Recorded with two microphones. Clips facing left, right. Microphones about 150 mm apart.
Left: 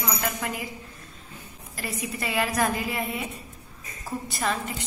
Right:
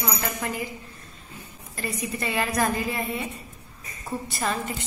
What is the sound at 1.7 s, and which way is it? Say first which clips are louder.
A woman's voice: right 2 dB; 5° left (ahead or behind).